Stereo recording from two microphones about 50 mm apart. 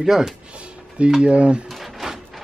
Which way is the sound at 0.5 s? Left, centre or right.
Right.